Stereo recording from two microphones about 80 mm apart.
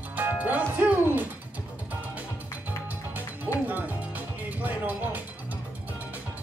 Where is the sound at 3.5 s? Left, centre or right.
Right.